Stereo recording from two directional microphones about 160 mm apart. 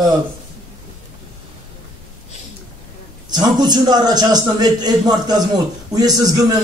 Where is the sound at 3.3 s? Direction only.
25° right (ahead or behind).